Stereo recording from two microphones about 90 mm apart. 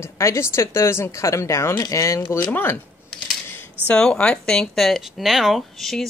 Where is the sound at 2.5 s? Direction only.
20° left (ahead or behind).